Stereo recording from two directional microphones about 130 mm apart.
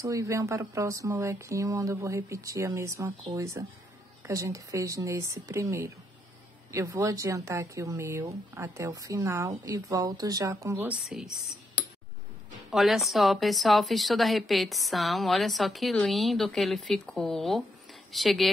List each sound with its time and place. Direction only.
0.0 s speech: 25° right (ahead or behind)
11.1 s speech: 5° right (ahead or behind)
12.7 s speech: centre (ahead or behind)